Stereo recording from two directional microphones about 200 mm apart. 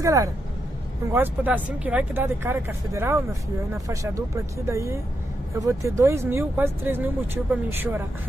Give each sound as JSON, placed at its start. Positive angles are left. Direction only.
{"t": 0.0, "sound": "speech", "side_deg": -15}